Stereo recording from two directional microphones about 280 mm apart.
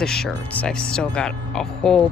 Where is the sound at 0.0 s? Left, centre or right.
Centre.